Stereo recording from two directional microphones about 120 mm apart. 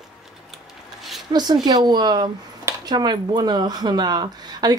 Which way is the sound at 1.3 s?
35° right (ahead or behind).